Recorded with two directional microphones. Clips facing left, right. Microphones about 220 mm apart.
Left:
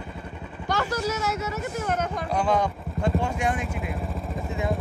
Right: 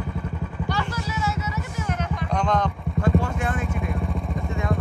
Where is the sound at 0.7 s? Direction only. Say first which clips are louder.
Left 5 dB; 45° left (ahead or behind).